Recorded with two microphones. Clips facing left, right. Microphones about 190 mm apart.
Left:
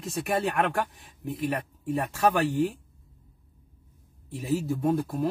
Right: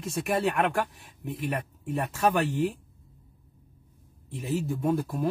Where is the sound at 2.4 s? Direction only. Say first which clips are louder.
Left 2 dB; 35° left (ahead or behind).